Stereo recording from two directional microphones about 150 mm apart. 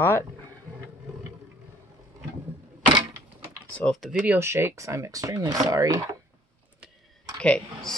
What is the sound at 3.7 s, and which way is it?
Speech, 5° left (ahead or behind).